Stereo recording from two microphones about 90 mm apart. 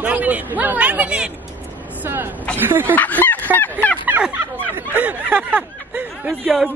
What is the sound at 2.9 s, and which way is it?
Fowl, 20° left (ahead or behind).